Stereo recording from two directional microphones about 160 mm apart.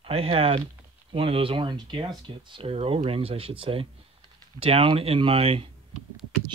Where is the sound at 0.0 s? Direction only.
35° right (ahead or behind).